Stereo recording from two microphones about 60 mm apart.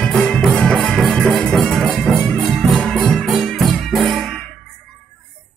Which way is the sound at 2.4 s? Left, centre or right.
Centre.